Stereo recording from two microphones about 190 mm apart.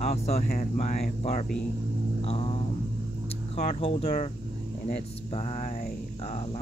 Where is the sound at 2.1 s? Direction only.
30° left (ahead or behind).